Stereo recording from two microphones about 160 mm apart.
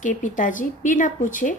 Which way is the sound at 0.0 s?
55° left (ahead or behind).